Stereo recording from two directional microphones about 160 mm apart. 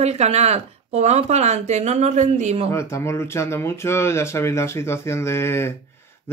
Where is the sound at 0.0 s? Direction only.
40° right (ahead or behind).